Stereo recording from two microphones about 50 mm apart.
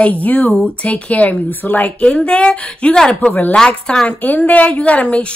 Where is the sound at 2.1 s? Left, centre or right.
Centre.